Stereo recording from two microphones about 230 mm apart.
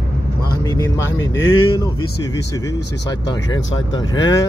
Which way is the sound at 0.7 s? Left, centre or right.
Centre.